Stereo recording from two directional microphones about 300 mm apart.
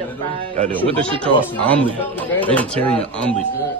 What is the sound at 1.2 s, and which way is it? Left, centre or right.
Speech, centre.